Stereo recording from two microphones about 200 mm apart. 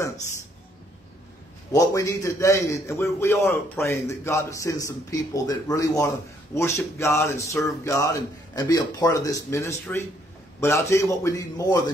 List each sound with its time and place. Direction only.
1.7 s a man's voice: 15° left (ahead or behind)